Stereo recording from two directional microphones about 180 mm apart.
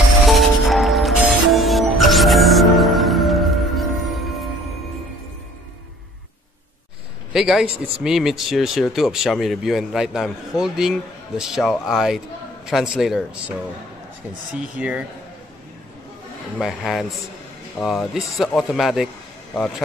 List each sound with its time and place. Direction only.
0.3 s music: centre (ahead or behind)
7.3 s speech: 5° right (ahead or behind)
16.5 s speech: centre (ahead or behind)